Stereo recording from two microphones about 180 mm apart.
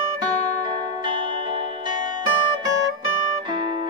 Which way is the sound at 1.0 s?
25° right (ahead or behind).